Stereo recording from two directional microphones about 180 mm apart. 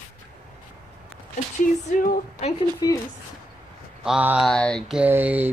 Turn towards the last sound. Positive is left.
turn(degrees=-10)  # may be behind; listen again after turning